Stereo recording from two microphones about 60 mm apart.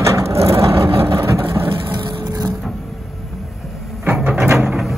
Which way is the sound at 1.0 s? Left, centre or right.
Right.